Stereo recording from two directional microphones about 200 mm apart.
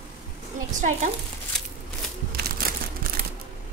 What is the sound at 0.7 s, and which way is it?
Speech, 35° right (ahead or behind).